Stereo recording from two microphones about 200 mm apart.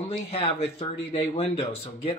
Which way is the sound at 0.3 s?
30° left (ahead or behind).